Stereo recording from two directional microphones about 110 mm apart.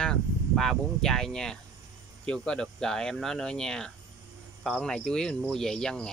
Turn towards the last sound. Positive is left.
turn(degrees=5)  # may be behind; listen again after turning